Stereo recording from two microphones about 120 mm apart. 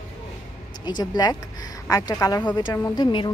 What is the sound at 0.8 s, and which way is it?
A woman's voice, 35° left (ahead or behind).